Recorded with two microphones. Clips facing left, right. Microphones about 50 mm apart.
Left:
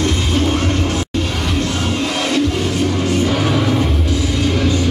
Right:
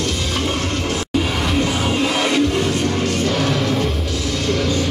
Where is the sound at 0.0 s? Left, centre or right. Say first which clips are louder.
Left 4 dB; left.